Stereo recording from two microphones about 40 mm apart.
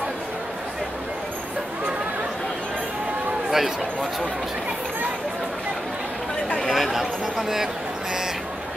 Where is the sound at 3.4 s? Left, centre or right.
Centre.